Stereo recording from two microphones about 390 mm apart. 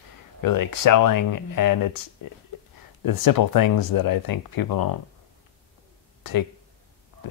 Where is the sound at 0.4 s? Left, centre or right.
Left.